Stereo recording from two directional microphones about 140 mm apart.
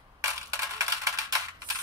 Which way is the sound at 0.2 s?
25° right (ahead or behind).